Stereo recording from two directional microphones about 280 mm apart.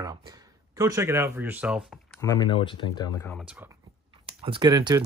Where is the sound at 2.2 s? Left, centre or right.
Centre.